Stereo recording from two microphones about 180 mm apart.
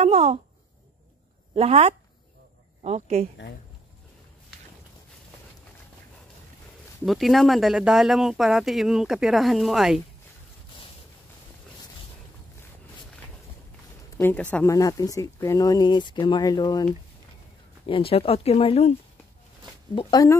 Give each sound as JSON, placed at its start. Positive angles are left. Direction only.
{"t": 0.0, "sound": "a sound", "side_deg": -35}
{"t": 1.5, "sound": "speech", "side_deg": -35}
{"t": 7.1, "sound": "speech", "side_deg": 0}
{"t": 14.1, "sound": "speech", "side_deg": 10}
{"t": 17.8, "sound": "speech", "side_deg": 30}
{"t": 20.0, "sound": "speech", "side_deg": 20}